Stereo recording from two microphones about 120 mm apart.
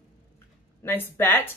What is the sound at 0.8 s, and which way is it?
Speech, 15° left (ahead or behind).